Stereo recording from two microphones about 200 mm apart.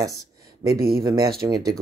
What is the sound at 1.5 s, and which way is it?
Speech, 15° right (ahead or behind).